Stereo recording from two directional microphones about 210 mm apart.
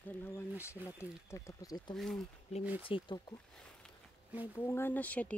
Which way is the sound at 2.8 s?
25° left (ahead or behind).